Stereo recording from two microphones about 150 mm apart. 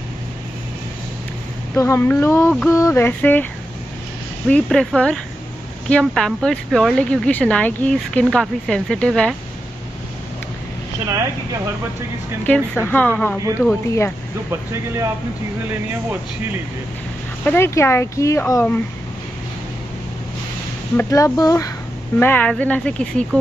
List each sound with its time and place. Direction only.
1.8 s speech: 15° left (ahead or behind)
4.5 s speech: 5° left (ahead or behind)
12.4 s speech: 15° left (ahead or behind)
14.5 s speech: 20° right (ahead or behind)
17.5 s speech: 15° left (ahead or behind)
20.9 s speech: 15° left (ahead or behind)
22.2 s speech: 10° left (ahead or behind)